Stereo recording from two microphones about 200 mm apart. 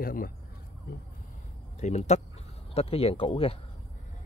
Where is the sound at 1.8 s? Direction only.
35° left (ahead or behind).